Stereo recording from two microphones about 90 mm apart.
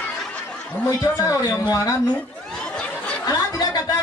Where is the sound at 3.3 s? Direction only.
45° left (ahead or behind).